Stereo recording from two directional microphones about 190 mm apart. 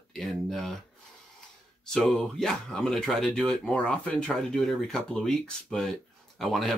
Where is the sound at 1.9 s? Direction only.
5° left (ahead or behind).